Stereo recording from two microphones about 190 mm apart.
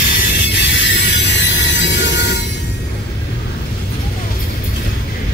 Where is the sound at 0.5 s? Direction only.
70° left (ahead or behind).